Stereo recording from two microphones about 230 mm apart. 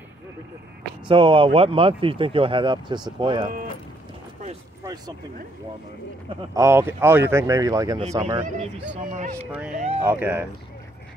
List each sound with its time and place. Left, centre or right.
1.0 s speech: right
4.8 s a sound: centre
6.5 s speech: centre; by 9.5 s right
10.0 s speech: centre